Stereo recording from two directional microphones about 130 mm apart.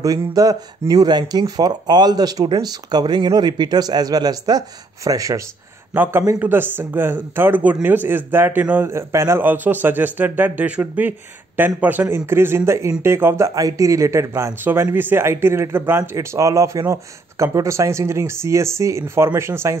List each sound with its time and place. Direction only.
0.0 s speech: 25° right (ahead or behind)
6.4 s a man's voice: 15° right (ahead or behind)